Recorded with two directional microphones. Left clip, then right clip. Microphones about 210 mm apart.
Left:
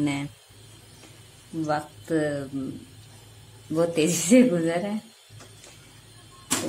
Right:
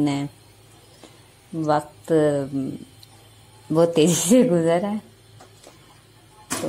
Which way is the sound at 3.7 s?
25° right (ahead or behind).